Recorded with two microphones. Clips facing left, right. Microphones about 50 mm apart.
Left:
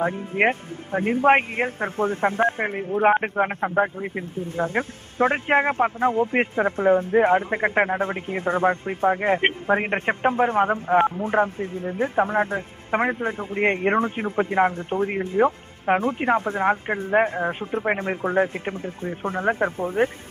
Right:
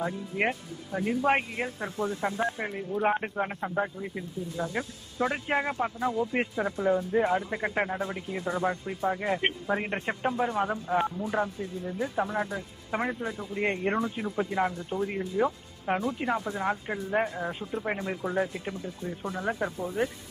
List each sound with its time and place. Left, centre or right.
0.0 s speech: left